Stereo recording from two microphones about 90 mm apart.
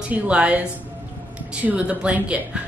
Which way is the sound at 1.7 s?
15° right (ahead or behind).